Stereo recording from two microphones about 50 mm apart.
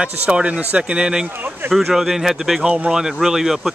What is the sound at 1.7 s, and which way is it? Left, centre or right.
Speech, centre.